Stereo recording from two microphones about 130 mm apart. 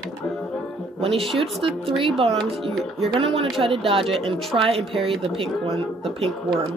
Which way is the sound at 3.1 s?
45° right (ahead or behind).